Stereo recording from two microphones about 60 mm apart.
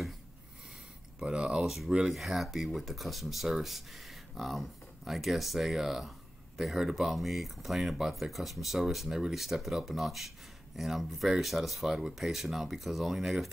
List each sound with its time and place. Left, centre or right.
1.2 s speech: centre
1.6 s speech: centre